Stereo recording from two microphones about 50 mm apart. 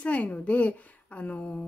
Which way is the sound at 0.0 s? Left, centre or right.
Left.